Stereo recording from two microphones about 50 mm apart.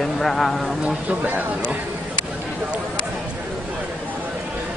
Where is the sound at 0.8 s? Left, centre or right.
Right.